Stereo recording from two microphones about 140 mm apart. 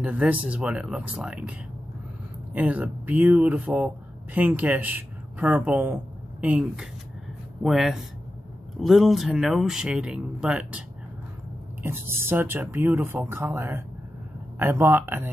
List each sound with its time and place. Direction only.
0.0 s speech: 10° right (ahead or behind)
2.5 s speech: 10° right (ahead or behind)
11.8 s speech: 15° right (ahead or behind)